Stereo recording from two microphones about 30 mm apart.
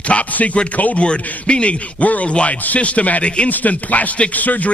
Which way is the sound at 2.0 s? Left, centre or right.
Left.